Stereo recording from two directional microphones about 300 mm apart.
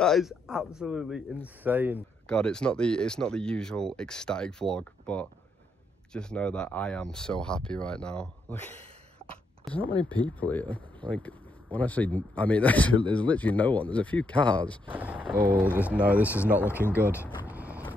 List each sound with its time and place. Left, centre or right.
0.0 s speech: centre
17.5 s vehicle: centre